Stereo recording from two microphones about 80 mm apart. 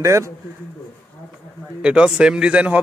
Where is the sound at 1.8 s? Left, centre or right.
Centre.